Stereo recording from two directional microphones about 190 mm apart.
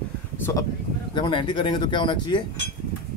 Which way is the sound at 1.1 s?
25° left (ahead or behind).